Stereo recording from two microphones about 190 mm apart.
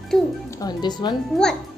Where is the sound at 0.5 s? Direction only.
20° left (ahead or behind).